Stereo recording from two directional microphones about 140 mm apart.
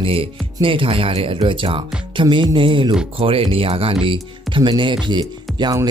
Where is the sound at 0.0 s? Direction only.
40° right (ahead or behind).